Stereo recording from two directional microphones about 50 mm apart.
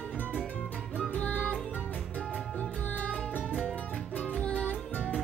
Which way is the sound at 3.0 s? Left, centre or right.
Left.